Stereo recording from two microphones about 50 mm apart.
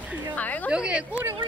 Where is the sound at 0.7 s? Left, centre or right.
Right.